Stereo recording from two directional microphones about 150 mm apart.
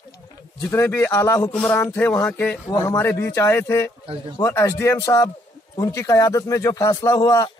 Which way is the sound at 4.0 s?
40° right (ahead or behind).